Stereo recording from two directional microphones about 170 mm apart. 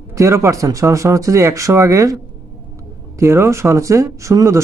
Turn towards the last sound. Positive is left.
turn(degrees=-20)  # may be behind; listen again after turning